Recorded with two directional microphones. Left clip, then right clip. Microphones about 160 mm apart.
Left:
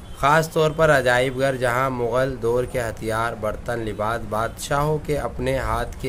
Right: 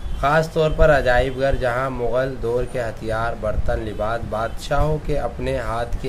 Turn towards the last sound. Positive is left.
turn(degrees=25)  # may be behind; listen again after turning